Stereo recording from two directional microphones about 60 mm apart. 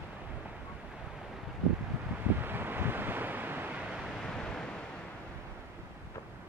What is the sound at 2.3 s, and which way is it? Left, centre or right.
Wind, right.